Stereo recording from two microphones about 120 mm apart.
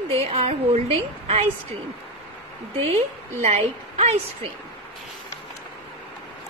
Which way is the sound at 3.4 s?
65° right (ahead or behind).